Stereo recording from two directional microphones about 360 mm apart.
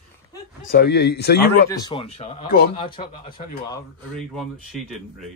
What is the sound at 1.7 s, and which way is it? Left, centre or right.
A man's voice, centre.